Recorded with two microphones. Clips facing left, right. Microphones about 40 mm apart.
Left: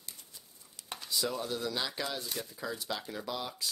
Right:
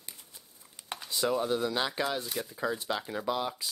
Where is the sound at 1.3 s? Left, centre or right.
Right.